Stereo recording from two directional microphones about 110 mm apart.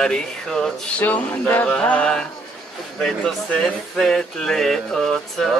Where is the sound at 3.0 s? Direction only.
5° left (ahead or behind).